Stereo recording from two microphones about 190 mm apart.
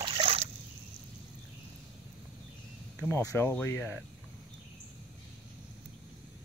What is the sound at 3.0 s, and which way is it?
Speech, 15° left (ahead or behind).